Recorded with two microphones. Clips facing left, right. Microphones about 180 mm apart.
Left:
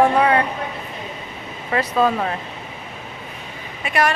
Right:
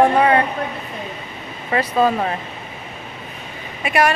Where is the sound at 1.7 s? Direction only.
5° right (ahead or behind).